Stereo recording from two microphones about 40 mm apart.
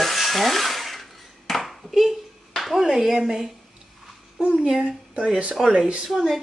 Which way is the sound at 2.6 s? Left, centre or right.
Centre.